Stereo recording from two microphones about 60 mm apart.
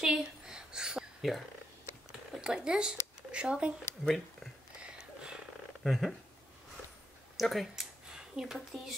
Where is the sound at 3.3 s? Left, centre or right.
Centre.